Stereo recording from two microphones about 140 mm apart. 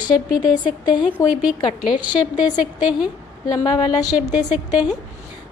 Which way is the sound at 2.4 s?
5° right (ahead or behind).